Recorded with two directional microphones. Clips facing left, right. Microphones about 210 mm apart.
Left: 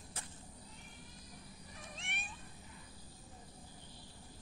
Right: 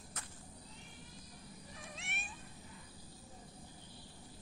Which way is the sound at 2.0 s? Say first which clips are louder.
Even; 5° right (ahead or behind).